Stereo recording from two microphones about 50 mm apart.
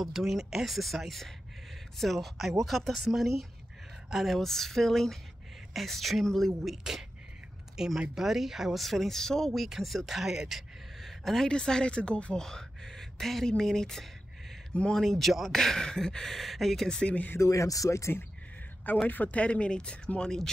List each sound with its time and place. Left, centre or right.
0.0 s speech: centre
8.8 s a woman's voice: centre; by 12.4 s left
12.4 s a sound: centre
13.5 s speech: centre
14.7 s speech: left
15.0 s speech: centre
17.4 s speech: left
19.0 s speech: left
20.2 s speech: centre